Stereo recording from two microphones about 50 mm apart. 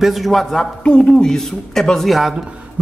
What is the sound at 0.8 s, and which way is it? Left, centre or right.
A woman's voice, left.